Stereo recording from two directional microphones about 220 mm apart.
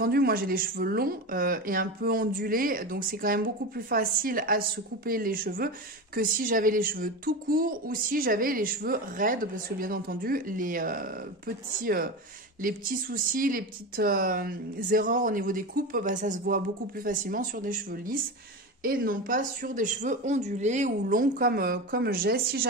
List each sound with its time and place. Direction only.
0.0 s speech: 45° right (ahead or behind)